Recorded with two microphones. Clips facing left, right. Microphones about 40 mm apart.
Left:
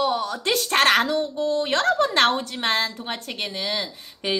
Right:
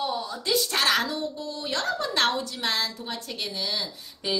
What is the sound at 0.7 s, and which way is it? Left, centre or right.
A woman's voice, left.